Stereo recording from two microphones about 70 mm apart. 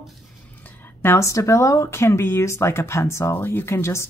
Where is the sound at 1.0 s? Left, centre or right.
Left.